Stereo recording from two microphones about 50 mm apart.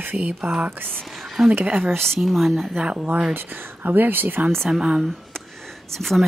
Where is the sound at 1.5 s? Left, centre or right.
Right.